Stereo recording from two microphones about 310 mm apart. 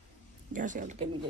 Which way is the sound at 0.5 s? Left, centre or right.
Right.